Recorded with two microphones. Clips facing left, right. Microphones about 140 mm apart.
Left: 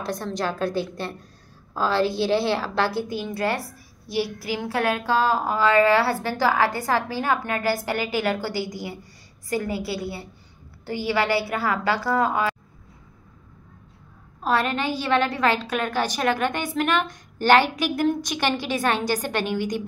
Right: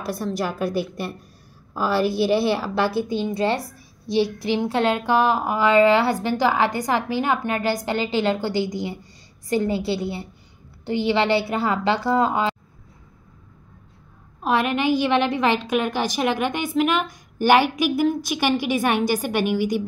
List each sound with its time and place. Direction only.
0.0 s a woman's voice: 10° right (ahead or behind)
14.4 s a woman's voice: 15° right (ahead or behind)